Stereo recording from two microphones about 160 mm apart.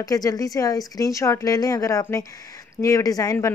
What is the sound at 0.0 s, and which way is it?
A woman's voice, 20° left (ahead or behind).